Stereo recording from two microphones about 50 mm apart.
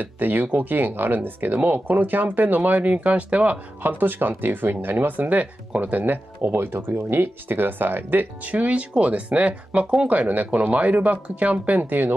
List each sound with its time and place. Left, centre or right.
0.0 s speech: right
10.0 s speech: right
11.8 s speech: right